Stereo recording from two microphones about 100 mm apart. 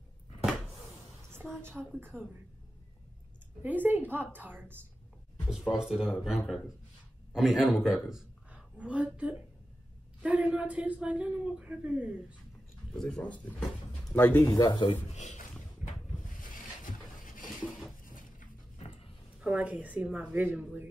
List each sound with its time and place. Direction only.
1.8 s speech: 5° right (ahead or behind)
3.6 s a woman's voice: 20° right (ahead or behind)
5.5 s a woman's voice: 5° right (ahead or behind)
12.9 s speech: 5° left (ahead or behind)
14.4 s speech: 35° left (ahead or behind)
14.7 s speech: 50° left (ahead or behind)
18.8 s dog: 75° left (ahead or behind)
19.4 s speech: 15° right (ahead or behind)